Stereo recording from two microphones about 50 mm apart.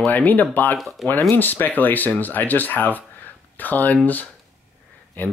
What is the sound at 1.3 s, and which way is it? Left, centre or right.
Speech, left.